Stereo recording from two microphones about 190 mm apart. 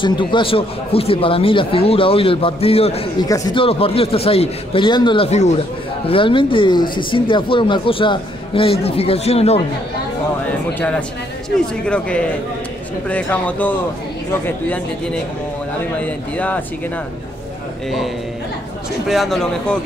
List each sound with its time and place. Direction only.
0.0 s speech: 25° left (ahead or behind)
3.3 s speech: 20° left (ahead or behind)
10.7 s a man's voice: 5° left (ahead or behind)
17.8 s a man's voice: centre (ahead or behind)